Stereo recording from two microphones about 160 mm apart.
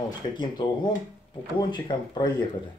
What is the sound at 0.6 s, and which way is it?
Speech, 30° left (ahead or behind).